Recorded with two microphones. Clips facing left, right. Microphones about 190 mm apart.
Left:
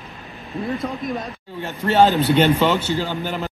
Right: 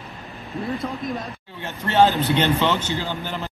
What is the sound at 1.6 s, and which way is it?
Speech, 15° left (ahead or behind).